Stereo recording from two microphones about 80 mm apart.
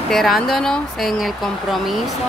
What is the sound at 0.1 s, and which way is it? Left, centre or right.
Speech, centre.